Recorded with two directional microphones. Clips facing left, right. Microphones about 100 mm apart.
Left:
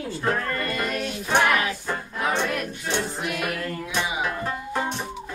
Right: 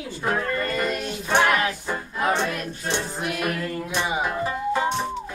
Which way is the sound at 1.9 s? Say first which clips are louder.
Even; 5° right (ahead or behind).